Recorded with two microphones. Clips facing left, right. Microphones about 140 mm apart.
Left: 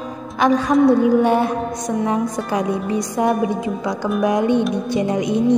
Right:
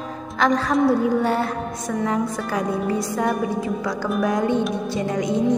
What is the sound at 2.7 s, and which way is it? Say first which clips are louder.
Music: left 2 dB; 20° left (ahead or behind).